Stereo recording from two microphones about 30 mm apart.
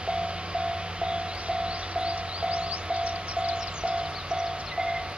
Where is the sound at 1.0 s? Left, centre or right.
Right.